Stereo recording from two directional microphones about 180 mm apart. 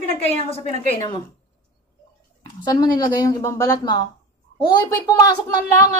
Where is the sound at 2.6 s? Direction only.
20° left (ahead or behind).